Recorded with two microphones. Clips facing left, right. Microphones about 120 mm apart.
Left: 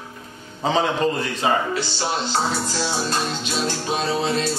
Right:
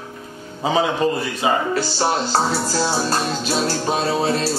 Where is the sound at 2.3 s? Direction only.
40° right (ahead or behind).